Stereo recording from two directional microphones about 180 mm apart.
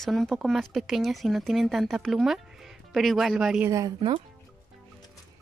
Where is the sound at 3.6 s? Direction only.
20° right (ahead or behind).